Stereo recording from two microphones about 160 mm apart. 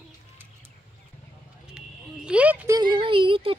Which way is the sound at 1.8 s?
5° right (ahead or behind).